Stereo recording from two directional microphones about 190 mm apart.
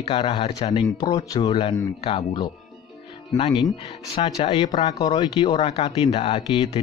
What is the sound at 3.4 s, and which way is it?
Speech, 30° left (ahead or behind).